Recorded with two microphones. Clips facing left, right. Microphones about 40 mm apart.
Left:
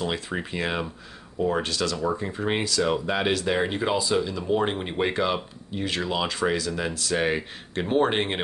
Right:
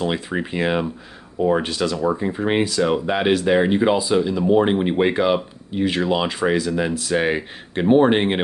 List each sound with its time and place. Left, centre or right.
0.0 s speech: centre